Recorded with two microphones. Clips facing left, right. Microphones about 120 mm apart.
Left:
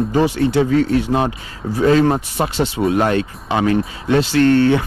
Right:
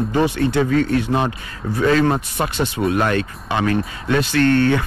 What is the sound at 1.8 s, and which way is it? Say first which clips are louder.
Speech: left 3 dB; 40° left (ahead or behind).